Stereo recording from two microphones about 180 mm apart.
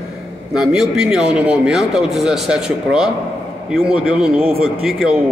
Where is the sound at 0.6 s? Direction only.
5° right (ahead or behind).